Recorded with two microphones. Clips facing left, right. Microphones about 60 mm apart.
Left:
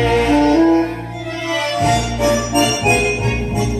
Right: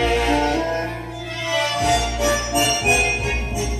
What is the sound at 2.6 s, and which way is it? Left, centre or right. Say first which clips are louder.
Music: left 5 dB; left.